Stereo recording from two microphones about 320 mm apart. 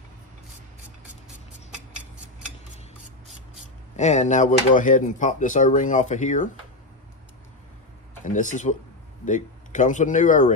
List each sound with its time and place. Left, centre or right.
3.9 s speech: left
8.2 s speech: left